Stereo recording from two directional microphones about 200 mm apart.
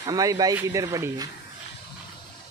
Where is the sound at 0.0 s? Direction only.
20° right (ahead or behind).